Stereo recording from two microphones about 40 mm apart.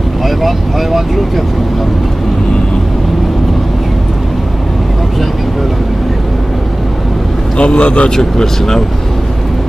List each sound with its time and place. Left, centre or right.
0.4 s speech: centre
7.5 s speech: left
8.2 s speech: centre